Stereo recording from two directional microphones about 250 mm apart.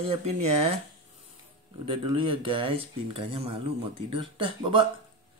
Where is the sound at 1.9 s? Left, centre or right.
Centre.